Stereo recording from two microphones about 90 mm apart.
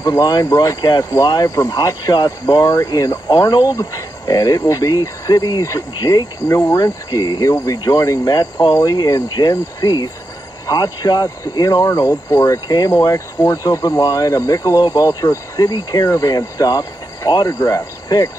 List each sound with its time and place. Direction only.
0.0 s speech: 45° left (ahead or behind)
3.3 s speech: 50° left (ahead or behind)